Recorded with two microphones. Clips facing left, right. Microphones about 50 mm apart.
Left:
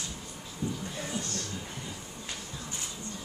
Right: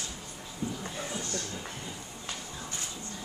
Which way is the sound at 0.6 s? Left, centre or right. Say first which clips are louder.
Left 1 dB; right.